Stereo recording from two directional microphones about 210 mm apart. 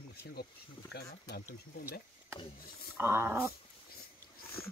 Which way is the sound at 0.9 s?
50° left (ahead or behind).